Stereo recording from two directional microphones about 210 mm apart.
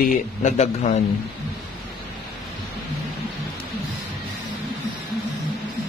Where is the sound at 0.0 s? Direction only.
35° left (ahead or behind).